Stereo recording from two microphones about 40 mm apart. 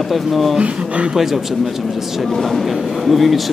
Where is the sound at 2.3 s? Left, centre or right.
Centre.